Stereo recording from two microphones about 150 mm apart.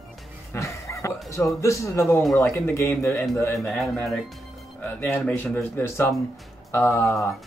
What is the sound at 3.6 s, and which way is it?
Speech, 5° left (ahead or behind).